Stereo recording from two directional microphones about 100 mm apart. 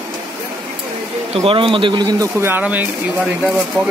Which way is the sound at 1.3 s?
65° right (ahead or behind).